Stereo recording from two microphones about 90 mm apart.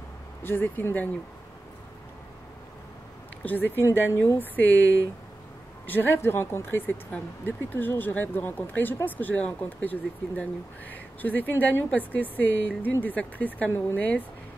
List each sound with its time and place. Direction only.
0.4 s speech: 25° left (ahead or behind)
3.4 s speech: 20° left (ahead or behind)